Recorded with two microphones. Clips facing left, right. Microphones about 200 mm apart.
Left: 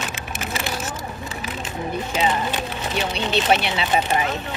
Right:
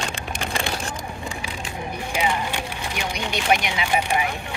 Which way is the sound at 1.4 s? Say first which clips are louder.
Left 3 dB; 15° right (ahead or behind).